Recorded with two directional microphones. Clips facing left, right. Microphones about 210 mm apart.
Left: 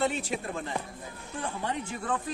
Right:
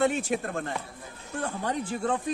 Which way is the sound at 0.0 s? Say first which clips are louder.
Right 4 dB; 50° right (ahead or behind).